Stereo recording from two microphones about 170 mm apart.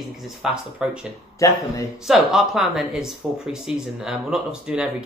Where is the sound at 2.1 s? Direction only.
Centre (ahead or behind).